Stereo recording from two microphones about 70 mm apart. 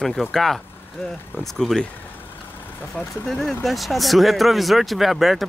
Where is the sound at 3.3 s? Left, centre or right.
Centre.